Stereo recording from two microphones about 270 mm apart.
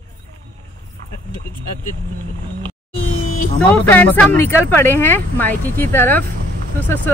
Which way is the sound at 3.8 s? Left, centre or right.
Centre.